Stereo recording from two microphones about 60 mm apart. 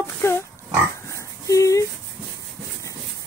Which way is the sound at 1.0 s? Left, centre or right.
Left.